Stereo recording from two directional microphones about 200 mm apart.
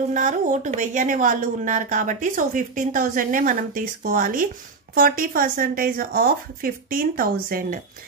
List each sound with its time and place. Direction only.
0.1 s a woman's voice: 40° right (ahead or behind)